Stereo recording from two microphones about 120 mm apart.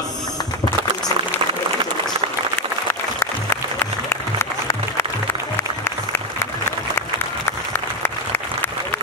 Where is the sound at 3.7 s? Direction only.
20° left (ahead or behind).